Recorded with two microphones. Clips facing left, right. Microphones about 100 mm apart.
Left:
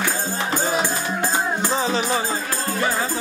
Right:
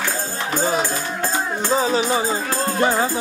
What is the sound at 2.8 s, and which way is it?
Speech, 20° right (ahead or behind).